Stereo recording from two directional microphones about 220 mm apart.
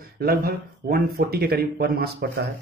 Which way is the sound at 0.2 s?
45° right (ahead or behind).